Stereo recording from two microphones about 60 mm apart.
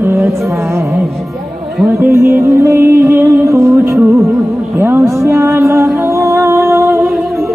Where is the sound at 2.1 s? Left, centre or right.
Right.